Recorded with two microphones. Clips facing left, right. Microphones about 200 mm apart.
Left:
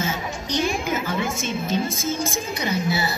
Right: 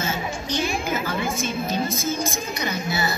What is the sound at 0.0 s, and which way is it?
Music, 15° left (ahead or behind).